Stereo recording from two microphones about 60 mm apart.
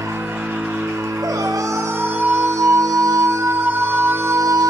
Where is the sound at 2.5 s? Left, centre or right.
Right.